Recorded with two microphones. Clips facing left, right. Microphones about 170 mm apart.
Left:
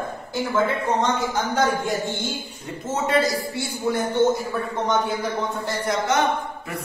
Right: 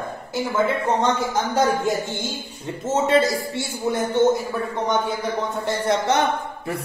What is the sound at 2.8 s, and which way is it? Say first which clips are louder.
A woman's voice: right 3 dB; 25° right (ahead or behind).